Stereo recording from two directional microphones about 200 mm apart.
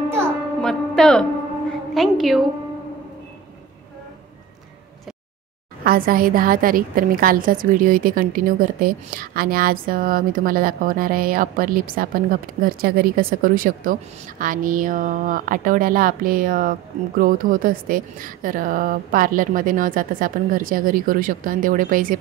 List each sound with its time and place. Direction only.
0.1 s music: 5° left (ahead or behind)
2.0 s a woman's voice: centre (ahead or behind)
5.9 s a woman's voice: 45° right (ahead or behind)